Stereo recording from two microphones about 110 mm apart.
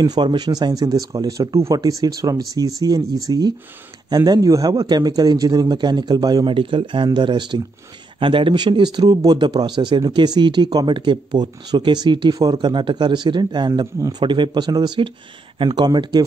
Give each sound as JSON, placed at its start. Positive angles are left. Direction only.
{"t": 0.0, "sound": "speech", "side_deg": -40}
{"t": 6.5, "sound": "a man's voice", "side_deg": -50}